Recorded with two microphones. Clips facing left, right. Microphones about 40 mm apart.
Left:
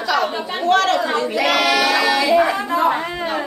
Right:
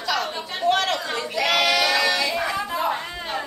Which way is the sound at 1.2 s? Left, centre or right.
Centre.